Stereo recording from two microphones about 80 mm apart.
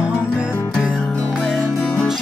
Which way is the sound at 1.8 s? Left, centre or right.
Centre.